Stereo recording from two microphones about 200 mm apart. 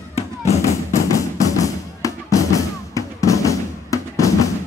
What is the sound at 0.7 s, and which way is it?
Music, 15° left (ahead or behind).